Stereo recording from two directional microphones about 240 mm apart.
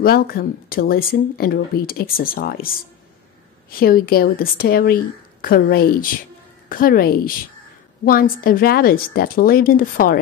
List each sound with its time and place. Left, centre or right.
0.0 s speech: left
3.8 s speech: left